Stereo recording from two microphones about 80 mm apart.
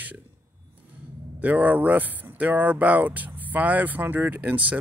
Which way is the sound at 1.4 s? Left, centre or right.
Centre.